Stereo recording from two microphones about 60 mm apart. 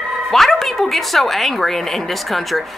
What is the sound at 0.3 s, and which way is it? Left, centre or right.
A woman's voice, centre.